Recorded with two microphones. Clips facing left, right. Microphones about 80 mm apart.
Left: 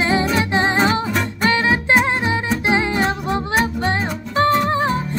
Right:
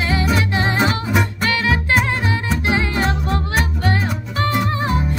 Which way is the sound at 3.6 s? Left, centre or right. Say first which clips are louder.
Left 1 dB; left.